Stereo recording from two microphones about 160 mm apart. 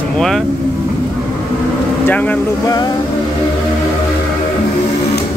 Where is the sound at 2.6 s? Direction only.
25° left (ahead or behind).